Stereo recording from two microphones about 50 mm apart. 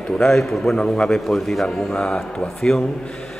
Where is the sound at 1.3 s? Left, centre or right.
Centre.